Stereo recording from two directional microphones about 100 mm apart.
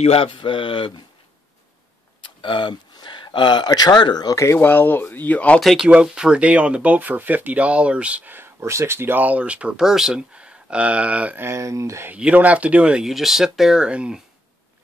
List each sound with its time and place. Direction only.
0.0 s speech: 70° left (ahead or behind)
2.2 s speech: 55° left (ahead or behind)
4.4 s speech: 25° left (ahead or behind)
5.6 s speech: centre (ahead or behind)
11.4 s speech: 30° right (ahead or behind)
12.1 s speech: 15° right (ahead or behind)